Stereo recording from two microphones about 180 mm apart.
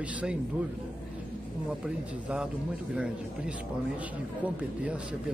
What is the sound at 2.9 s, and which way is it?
Speech, 5° right (ahead or behind).